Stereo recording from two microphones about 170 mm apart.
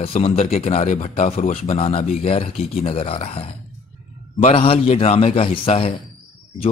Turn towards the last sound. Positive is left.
turn(degrees=35)  # may be behind; listen again after turning